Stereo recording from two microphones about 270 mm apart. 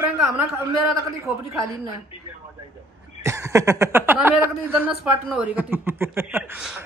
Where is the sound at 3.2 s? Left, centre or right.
Centre.